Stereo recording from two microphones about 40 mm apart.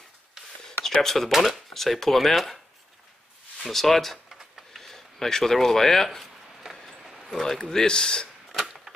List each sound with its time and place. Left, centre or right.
1.0 s speech: centre
3.6 s speech: centre
4.3 s tick-tock: centre
4.8 s speech: centre
6.9 s a sound: centre
7.4 s speech: centre
8.5 s a sound: centre